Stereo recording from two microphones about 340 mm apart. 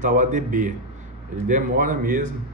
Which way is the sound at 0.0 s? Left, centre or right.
Right.